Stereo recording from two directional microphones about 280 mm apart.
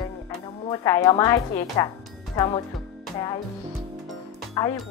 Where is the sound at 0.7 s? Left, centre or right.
Centre.